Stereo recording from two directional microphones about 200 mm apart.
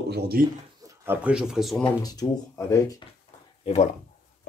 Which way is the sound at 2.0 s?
20° left (ahead or behind).